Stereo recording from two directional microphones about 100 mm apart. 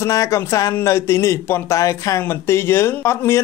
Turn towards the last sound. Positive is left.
turn(degrees=25)  # may be behind; listen again after turning